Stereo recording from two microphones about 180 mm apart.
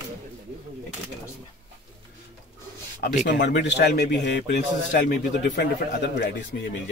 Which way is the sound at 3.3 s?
75° left (ahead or behind).